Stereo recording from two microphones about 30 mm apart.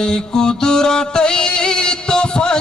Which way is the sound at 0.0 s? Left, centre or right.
Left.